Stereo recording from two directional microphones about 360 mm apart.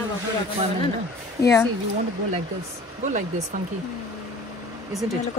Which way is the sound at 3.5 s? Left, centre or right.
Right.